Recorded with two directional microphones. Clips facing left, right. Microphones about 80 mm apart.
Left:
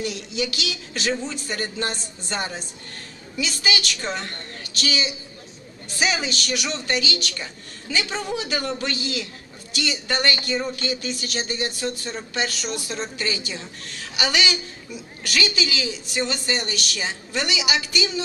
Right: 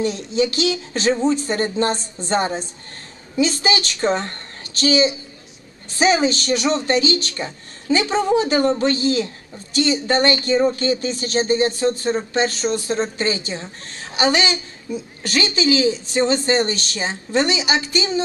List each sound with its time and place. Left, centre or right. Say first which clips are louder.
0.0 s a woman's voice: right 8 dB; right